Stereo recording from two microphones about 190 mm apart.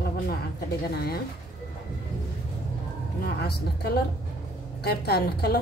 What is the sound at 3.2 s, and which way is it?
A woman's voice, 55° left (ahead or behind).